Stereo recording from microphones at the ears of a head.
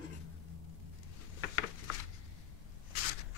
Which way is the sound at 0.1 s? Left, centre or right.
Left.